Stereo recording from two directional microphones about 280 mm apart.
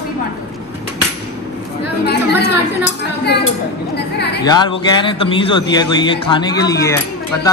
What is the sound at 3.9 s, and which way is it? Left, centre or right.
Speech, left.